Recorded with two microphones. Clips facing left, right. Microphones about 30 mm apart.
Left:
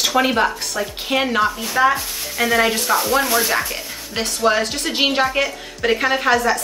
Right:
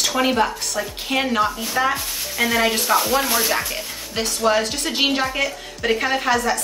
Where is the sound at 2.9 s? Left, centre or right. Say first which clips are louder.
Even; centre.